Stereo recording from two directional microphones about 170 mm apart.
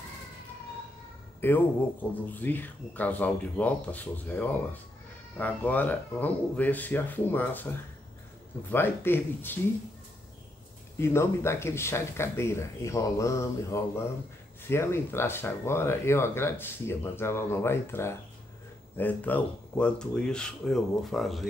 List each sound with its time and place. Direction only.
1.4 s speech: 10° left (ahead or behind)
8.6 s speech: 10° left (ahead or behind)
11.0 s speech: 15° left (ahead or behind); by 21.5 s centre (ahead or behind)